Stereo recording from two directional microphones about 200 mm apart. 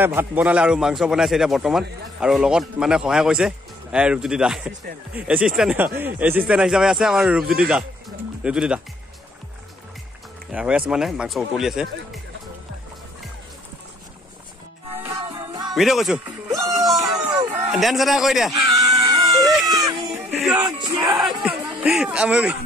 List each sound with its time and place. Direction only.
0.0 s a man's voice: 10° right (ahead or behind)
10.5 s a man's voice: 5° right (ahead or behind)
15.1 s music: 25° right (ahead or behind)
15.7 s a man's voice: centre (ahead or behind)
16.3 s music: 20° right (ahead or behind)
16.9 s a sound: 20° right (ahead or behind)
17.7 s a man's voice: centre (ahead or behind)
18.5 s screaming: 15° right (ahead or behind)
19.4 s baby cry: centre (ahead or behind)
19.7 s music: 20° right (ahead or behind)
20.2 s music: centre (ahead or behind)
20.6 s a sound: 20° right (ahead or behind)
21.3 s music: 5° right (ahead or behind)
21.8 s a man's voice: 5° right (ahead or behind)